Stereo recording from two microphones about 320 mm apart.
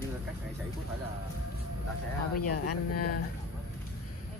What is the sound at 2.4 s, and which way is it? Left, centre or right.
Speech, left.